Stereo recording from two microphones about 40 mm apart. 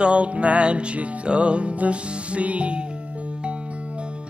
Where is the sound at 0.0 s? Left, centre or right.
Right.